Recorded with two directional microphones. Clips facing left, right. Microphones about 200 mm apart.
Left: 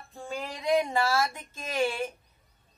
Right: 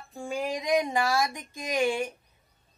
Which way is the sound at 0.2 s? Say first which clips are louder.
Right 4 dB; 10° right (ahead or behind).